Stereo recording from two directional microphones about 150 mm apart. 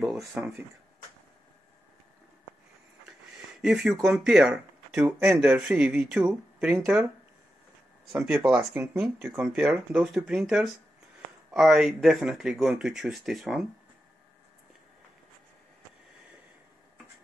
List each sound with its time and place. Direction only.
0.2 s speech: 15° right (ahead or behind)
3.6 s speech: 5° right (ahead or behind)
8.1 s speech: 5° right (ahead or behind)
8.7 s speech: 15° right (ahead or behind)